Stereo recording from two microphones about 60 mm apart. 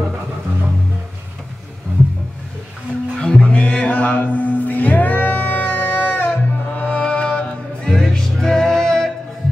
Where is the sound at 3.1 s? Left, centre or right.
Centre.